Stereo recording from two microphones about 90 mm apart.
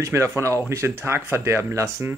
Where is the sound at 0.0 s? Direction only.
30° right (ahead or behind).